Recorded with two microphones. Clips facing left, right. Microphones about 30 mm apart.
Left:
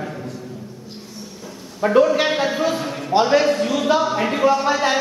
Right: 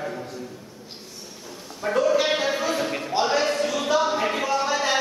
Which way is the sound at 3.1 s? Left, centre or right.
Left.